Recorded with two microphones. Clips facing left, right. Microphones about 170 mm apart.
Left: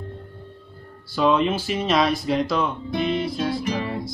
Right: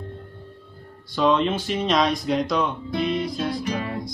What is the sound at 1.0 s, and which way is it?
Speech, 5° left (ahead or behind).